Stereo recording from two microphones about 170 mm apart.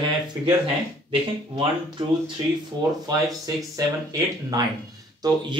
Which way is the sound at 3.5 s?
20° right (ahead or behind).